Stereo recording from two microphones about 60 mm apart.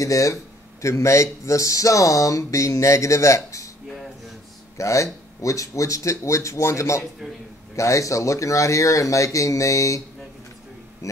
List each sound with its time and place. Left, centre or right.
0.0 s speech: left
0.8 s speech: left
4.7 s speech: left